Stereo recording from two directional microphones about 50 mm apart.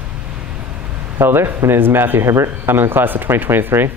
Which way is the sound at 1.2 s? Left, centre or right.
Right.